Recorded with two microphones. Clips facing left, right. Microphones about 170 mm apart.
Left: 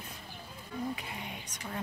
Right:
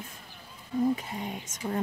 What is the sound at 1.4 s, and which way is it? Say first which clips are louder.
Speech: right 9 dB; 45° right (ahead or behind).